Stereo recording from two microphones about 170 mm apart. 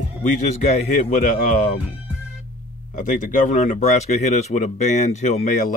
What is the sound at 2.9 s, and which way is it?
Speech, 55° left (ahead or behind).